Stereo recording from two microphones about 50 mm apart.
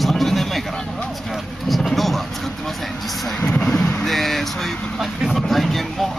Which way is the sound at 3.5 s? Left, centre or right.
Centre.